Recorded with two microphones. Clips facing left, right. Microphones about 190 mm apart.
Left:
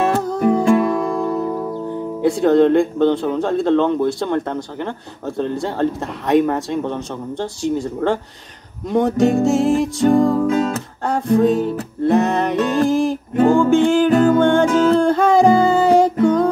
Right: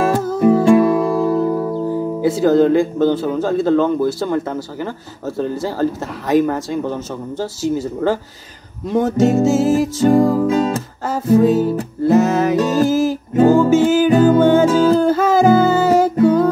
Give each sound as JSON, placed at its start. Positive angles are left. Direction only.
{"t": 0.1, "sound": "music", "side_deg": -5}
{"t": 0.5, "sound": "speech", "side_deg": -5}
{"t": 8.9, "sound": "music", "side_deg": 0}
{"t": 10.4, "sound": "music", "side_deg": -20}
{"t": 11.1, "sound": "music", "side_deg": -5}